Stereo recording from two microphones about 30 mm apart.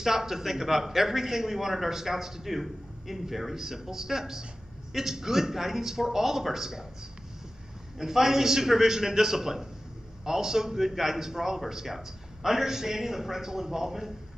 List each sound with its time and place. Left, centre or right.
0.0 s a man's voice: centre
8.0 s a man's voice: centre